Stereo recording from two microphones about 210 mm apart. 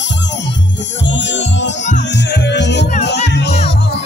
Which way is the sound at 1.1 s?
60° left (ahead or behind).